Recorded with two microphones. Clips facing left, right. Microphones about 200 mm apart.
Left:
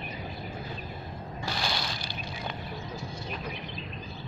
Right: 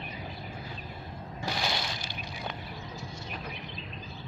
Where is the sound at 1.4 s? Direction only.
20° right (ahead or behind).